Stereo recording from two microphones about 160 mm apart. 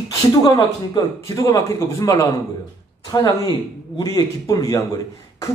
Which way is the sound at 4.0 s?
20° left (ahead or behind).